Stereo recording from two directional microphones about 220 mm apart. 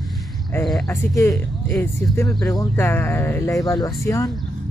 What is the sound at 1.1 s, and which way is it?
Speech, 15° left (ahead or behind).